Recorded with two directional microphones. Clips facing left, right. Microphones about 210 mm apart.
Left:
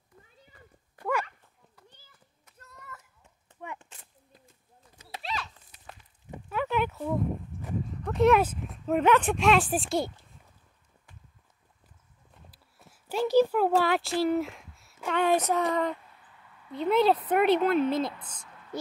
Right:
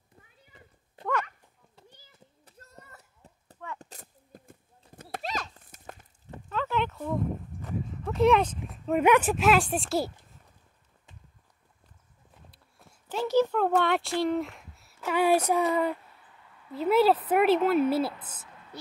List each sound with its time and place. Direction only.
0.5 s cat: 20° right (ahead or behind)
2.1 s a sound: 30° right (ahead or behind)
3.8 s horse: 40° right (ahead or behind)
6.3 s a sound: 15° left (ahead or behind)
9.0 s child singing: 10° right (ahead or behind)
9.3 s speech: centre (ahead or behind)
12.4 s clip-clop: 5° left (ahead or behind)
14.2 s a sound: centre (ahead or behind)
15.0 s child singing: 10° right (ahead or behind)
16.7 s speech: 5° right (ahead or behind)